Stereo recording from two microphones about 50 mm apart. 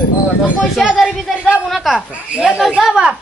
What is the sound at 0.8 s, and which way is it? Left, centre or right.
Speech, centre.